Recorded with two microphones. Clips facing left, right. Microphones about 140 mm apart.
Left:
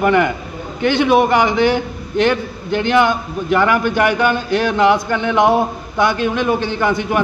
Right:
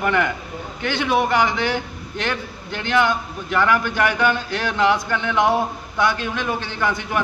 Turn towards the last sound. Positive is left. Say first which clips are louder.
# left 6 dB
turn(degrees=20)  # may be behind; listen again after turning